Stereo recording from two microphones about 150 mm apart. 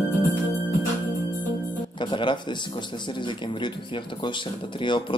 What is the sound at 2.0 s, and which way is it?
A man's voice, 30° left (ahead or behind).